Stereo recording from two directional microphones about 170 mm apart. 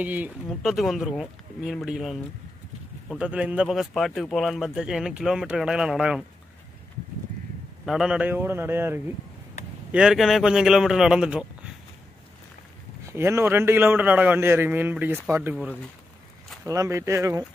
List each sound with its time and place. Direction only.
0.0 s speech: 10° right (ahead or behind)
7.8 s a man's voice: 5° right (ahead or behind)
9.9 s speech: centre (ahead or behind)
13.0 s a man's voice: 15° right (ahead or behind)